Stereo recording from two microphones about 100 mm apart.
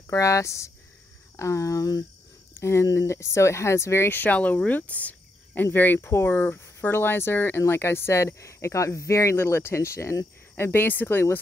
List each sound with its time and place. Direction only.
0.0 s speech: 30° left (ahead or behind)